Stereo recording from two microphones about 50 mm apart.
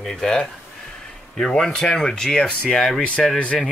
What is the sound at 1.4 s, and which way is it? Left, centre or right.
Speech, centre.